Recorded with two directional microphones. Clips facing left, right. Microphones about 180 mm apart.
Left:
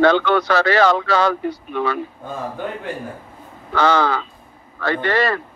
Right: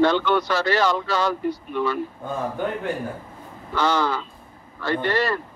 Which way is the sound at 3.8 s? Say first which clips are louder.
Left 5 dB; 70° left (ahead or behind).